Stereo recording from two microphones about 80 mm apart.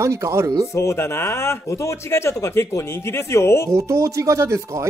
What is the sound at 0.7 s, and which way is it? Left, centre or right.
Speech, left.